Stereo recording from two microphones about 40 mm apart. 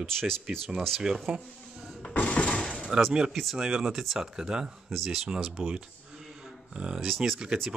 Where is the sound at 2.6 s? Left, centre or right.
Centre.